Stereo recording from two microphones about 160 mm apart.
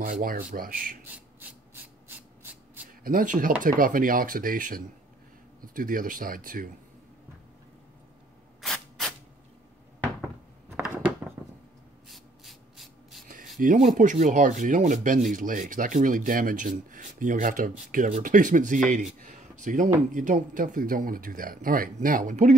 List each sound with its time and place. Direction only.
0.0 s speech: 60° right (ahead or behind)
1.7 s a sound: 10° right (ahead or behind)
3.0 s speech: 60° right (ahead or behind)
8.5 s spray: centre (ahead or behind)
10.8 s a sound: 5° right (ahead or behind)
12.1 s rub: centre (ahead or behind)
13.6 s speech: 55° right (ahead or behind)
19.1 s a sound: 55° right (ahead or behind)
20.2 s speech: 55° right (ahead or behind)